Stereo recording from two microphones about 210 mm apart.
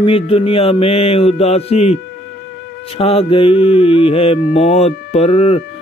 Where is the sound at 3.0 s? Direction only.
25° left (ahead or behind).